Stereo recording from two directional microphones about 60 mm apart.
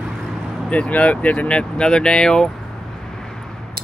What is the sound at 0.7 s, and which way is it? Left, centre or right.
Speech, left.